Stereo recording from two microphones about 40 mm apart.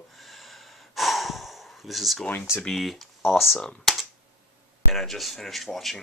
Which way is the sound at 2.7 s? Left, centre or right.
Centre.